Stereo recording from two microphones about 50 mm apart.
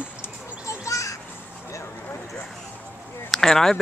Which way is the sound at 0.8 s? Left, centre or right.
Left.